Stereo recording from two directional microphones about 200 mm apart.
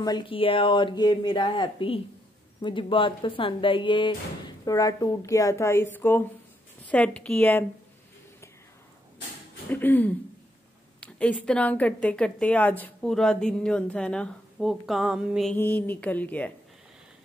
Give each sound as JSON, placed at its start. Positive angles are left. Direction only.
{"t": 0.0, "sound": "a woman's voice", "side_deg": 25}
{"t": 9.7, "sound": "a woman's voice", "side_deg": 10}
{"t": 15.5, "sound": "a woman's voice", "side_deg": 10}